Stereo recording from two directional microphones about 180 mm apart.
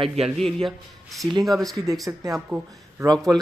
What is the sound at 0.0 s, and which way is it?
Speech, 35° right (ahead or behind).